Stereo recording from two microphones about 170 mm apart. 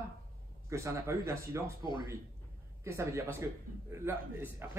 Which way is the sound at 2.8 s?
15° right (ahead or behind).